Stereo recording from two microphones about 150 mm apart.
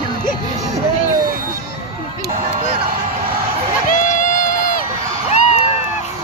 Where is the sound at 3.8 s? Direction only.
60° left (ahead or behind).